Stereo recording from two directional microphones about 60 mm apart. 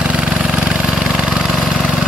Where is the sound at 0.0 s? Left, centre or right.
Centre.